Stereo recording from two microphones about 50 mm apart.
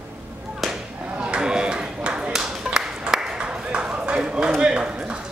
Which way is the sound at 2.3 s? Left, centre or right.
Centre.